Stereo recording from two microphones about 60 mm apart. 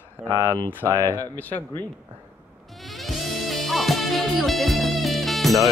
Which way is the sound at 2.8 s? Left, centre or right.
Centre.